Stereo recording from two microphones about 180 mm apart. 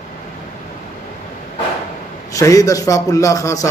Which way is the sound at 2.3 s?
20° left (ahead or behind).